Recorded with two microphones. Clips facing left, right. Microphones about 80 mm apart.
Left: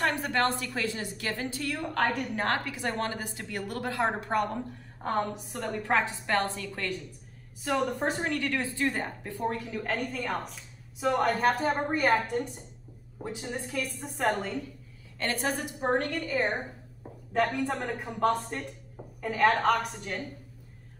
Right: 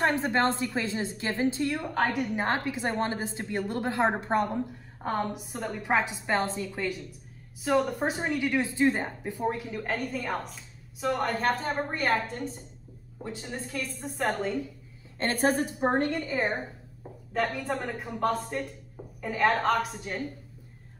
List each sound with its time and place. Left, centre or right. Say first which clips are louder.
0.0 s a woman's voice: right 2 dB; right
5.0 s a woman's voice: even; centre
15.1 s a woman's voice: right 5 dB; right
17.3 s speech: left 2 dB; centre